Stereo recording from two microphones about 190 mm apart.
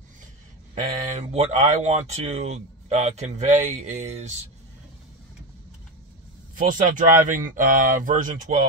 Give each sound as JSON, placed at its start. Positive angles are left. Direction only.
{"t": 0.7, "sound": "speech", "side_deg": -45}
{"t": 6.5, "sound": "speech", "side_deg": -45}